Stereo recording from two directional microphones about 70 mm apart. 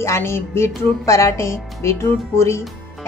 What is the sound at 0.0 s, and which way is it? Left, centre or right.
A woman's voice, left.